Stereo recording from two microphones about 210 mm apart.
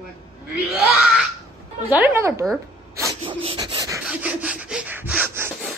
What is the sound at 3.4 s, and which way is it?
Filing, 25° right (ahead or behind).